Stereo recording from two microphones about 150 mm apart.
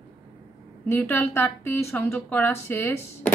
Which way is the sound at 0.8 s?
15° left (ahead or behind).